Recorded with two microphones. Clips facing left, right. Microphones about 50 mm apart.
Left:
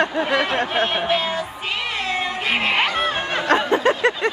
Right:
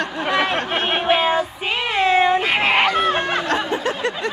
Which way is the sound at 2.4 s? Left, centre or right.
Centre.